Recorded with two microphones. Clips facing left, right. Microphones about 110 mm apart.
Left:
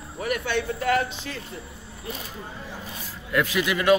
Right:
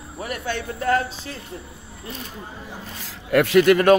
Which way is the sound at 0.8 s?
35° right (ahead or behind).